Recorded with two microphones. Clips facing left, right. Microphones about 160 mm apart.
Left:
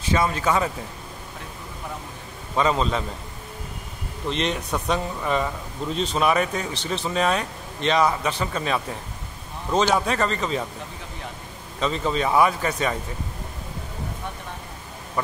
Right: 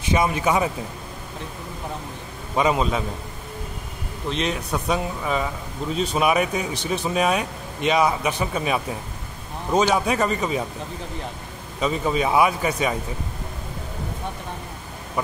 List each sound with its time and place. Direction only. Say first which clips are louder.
0.0 s speech: right 1 dB; 15° right (ahead or behind)
2.5 s speech: right 1 dB; 10° right (ahead or behind)
4.3 s speech: even; 5° right (ahead or behind)
11.8 s speech: right 2 dB; 10° right (ahead or behind)